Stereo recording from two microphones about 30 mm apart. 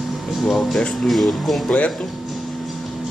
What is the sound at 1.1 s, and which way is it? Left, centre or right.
Speech, centre.